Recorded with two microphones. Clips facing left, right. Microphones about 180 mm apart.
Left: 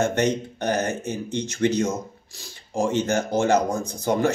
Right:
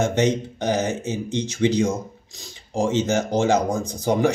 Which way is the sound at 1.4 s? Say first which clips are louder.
Right 2 dB; 15° right (ahead or behind).